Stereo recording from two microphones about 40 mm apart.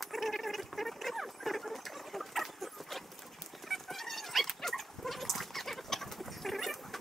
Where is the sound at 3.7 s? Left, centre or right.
Centre.